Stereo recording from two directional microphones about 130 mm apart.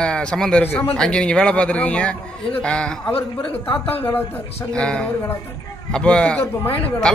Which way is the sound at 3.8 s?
45° left (ahead or behind).